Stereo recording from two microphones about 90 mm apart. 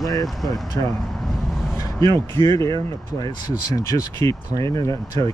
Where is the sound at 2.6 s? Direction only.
35° left (ahead or behind).